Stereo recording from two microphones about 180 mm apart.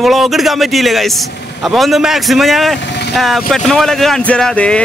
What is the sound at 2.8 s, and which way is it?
Speech, 70° left (ahead or behind).